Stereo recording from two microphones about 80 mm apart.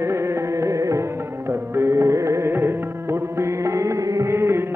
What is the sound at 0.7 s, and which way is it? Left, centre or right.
Music, right.